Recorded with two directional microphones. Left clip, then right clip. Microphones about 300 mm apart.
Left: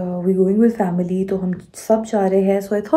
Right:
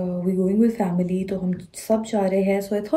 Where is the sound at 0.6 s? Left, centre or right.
Left.